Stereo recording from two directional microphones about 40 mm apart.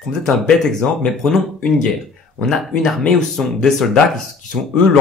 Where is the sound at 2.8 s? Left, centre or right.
Centre.